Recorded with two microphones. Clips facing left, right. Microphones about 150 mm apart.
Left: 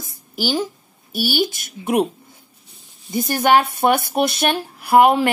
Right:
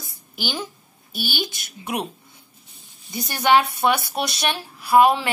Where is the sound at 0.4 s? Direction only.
40° left (ahead or behind).